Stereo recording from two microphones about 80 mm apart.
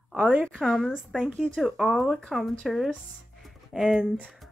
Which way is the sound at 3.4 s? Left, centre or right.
Centre.